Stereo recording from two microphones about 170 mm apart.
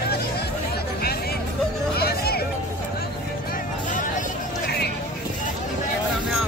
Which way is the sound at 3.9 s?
50° left (ahead or behind).